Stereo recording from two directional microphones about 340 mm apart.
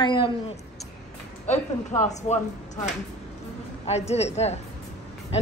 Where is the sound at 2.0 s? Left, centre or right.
Centre.